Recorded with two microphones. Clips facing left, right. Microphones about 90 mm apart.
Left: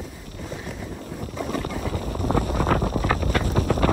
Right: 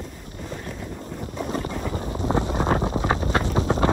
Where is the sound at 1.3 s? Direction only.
35° right (ahead or behind).